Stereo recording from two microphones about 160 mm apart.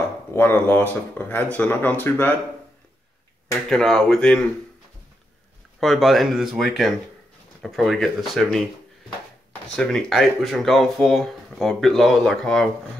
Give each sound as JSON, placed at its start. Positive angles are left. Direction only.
{"t": 0.3, "sound": "speech", "side_deg": 15}
{"t": 3.7, "sound": "speech", "side_deg": 5}
{"t": 5.8, "sound": "speech", "side_deg": 0}